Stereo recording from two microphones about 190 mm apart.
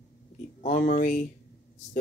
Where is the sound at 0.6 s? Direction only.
40° left (ahead or behind).